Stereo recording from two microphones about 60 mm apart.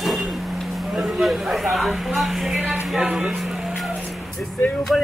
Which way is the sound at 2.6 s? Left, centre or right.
Centre.